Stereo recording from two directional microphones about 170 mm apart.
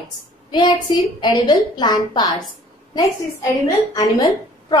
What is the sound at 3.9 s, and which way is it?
Speech, 25° left (ahead or behind).